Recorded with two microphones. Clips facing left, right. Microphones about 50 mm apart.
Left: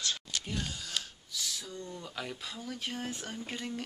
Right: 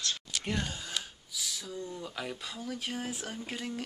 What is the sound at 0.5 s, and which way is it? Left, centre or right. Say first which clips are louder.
Gasp: right 2 dB; right.